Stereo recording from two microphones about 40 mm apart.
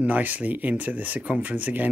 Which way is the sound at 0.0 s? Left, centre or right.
Right.